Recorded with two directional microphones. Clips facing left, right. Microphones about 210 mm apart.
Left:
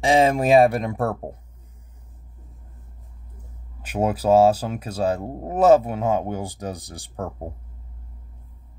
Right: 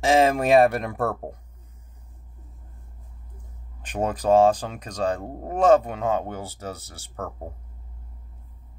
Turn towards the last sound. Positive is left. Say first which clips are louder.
# left 3 dB
turn(degrees=15)  # may be behind; listen again after turning